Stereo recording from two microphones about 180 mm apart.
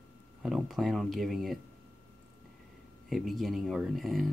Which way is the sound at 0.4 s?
Centre (ahead or behind).